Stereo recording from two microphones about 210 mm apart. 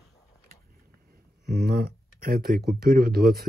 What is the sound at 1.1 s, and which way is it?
Speech, 45° right (ahead or behind).